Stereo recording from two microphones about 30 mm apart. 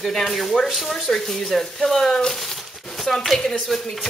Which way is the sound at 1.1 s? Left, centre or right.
Centre.